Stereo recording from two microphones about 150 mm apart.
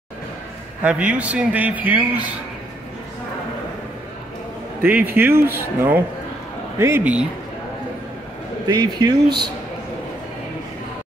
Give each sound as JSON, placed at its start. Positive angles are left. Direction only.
{"t": 0.8, "sound": "a man's voice", "side_deg": -10}
{"t": 4.8, "sound": "a man's voice", "side_deg": -15}
{"t": 8.6, "sound": "speech", "side_deg": -25}